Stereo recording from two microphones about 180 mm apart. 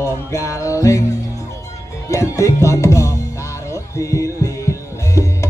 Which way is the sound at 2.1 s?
15° left (ahead or behind).